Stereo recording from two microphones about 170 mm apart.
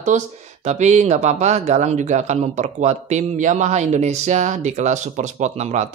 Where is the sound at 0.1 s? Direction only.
45° right (ahead or behind).